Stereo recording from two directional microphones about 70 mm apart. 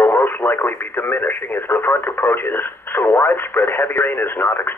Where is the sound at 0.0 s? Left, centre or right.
Left.